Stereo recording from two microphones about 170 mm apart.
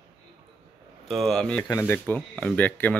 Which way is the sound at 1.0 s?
Centre (ahead or behind).